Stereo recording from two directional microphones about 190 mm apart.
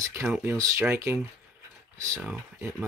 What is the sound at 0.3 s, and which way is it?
Speech, 15° right (ahead or behind).